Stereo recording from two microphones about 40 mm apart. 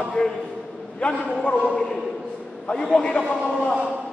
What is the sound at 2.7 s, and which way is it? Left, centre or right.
Speech, centre.